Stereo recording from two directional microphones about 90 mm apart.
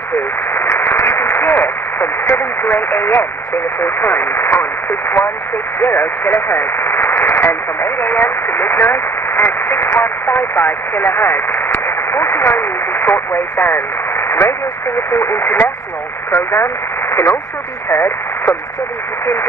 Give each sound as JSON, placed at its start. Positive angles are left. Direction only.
{"t": 0.5, "sound": "a sound", "side_deg": 25}
{"t": 3.8, "sound": "speech", "side_deg": 25}
{"t": 5.8, "sound": "speech", "side_deg": 30}